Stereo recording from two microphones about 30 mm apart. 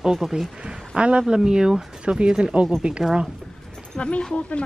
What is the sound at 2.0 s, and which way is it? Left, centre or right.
A woman's voice, right.